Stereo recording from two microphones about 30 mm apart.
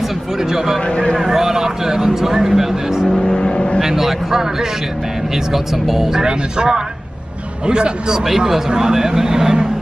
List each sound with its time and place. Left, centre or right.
1.2 s a sound: centre
3.3 s vehicle: left
3.8 s speech: centre
5.5 s speech: centre
6.2 s a man's voice: right
8.3 s speech: centre